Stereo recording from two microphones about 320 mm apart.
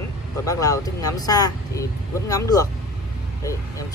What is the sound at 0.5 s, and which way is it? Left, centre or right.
Speech, centre.